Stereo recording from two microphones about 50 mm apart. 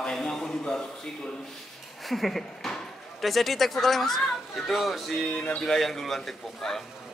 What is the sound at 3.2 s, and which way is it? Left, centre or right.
Speech, centre.